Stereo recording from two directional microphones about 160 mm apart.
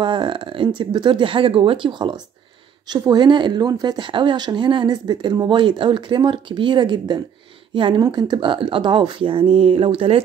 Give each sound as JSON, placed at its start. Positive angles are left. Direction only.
{"t": 0.0, "sound": "speech", "side_deg": -30}